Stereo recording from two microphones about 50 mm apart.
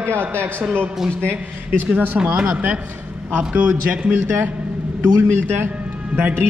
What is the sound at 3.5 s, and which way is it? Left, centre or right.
Speech, right.